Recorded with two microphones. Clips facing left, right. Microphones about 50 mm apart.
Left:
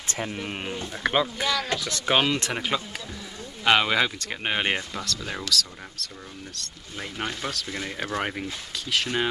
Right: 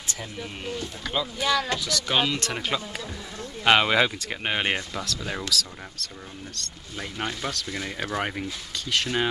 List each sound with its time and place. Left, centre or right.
0.0 s speech: left
2.1 s speech: centre
3.6 s speech: centre